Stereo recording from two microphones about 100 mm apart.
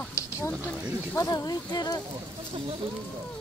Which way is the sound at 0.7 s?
15° right (ahead or behind).